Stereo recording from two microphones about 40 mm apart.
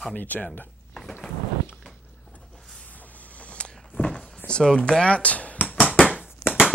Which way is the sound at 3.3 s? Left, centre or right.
Left.